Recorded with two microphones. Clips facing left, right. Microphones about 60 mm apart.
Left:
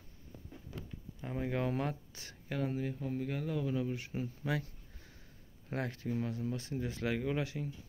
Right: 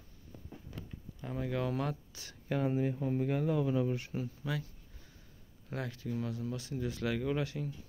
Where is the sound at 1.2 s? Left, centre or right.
Left.